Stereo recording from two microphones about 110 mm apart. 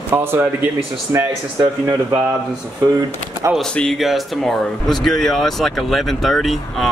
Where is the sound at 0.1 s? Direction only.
20° right (ahead or behind).